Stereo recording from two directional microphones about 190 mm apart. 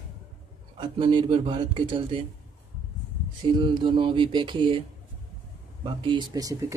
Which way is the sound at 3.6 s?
25° right (ahead or behind).